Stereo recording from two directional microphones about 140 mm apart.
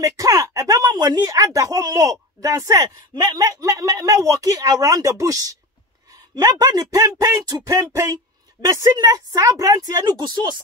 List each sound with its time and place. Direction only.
0.0 s speech: 25° right (ahead or behind)